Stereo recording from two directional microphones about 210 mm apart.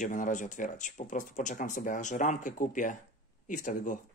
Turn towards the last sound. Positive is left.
turn(degrees=35)  # may be behind; listen again after turning